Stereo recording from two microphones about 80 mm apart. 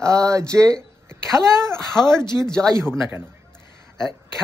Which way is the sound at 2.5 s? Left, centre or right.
Centre.